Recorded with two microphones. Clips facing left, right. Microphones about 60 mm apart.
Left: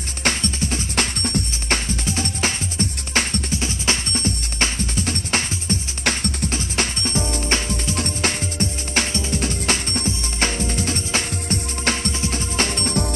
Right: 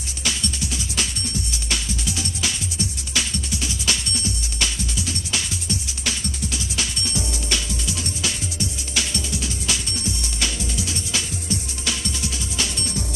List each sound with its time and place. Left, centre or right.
0.2 s music: left
2.0 s music: left